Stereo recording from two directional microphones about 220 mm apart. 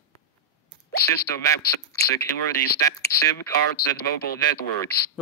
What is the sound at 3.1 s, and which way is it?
Speech, 45° left (ahead or behind).